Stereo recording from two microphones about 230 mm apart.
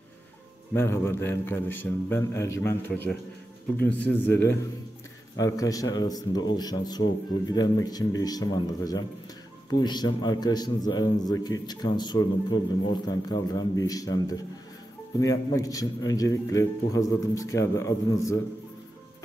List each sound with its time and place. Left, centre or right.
0.7 s a man's voice: centre